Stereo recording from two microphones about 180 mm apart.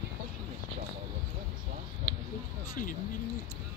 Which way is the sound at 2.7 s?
50° left (ahead or behind).